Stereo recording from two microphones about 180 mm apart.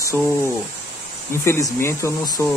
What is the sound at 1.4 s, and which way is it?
Speech, 15° left (ahead or behind).